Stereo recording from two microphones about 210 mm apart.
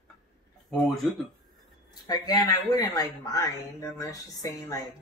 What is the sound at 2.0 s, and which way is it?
Speech, 20° left (ahead or behind).